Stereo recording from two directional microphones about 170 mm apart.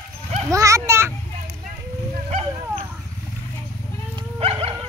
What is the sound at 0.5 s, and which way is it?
Children playing, 20° right (ahead or behind).